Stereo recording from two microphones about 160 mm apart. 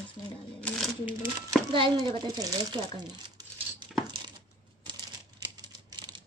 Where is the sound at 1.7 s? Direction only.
30° right (ahead or behind).